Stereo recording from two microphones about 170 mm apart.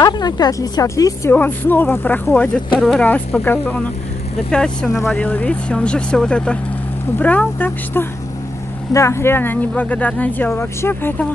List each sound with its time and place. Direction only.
0.0 s speech: 25° left (ahead or behind)